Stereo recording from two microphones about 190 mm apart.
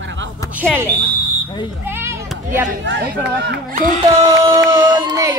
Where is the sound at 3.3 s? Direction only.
65° right (ahead or behind).